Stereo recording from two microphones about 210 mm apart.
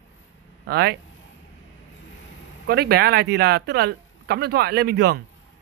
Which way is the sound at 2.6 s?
50° right (ahead or behind).